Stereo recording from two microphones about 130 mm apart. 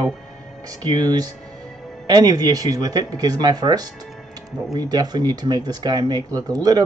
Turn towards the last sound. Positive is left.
turn(degrees=-30)  # may be behind; listen again after turning